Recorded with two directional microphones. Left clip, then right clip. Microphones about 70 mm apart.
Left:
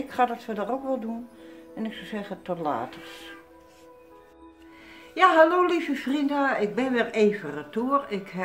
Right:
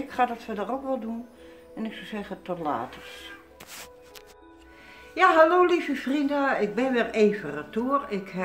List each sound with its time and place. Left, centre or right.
0.1 s speech: left
5.1 s a woman's voice: left